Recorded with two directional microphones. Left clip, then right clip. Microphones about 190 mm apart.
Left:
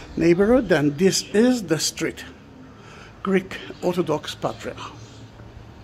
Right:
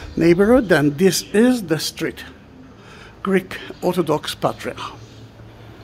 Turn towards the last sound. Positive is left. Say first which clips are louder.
# right 5 dB
turn(degrees=-25)  # may be behind; listen again after turning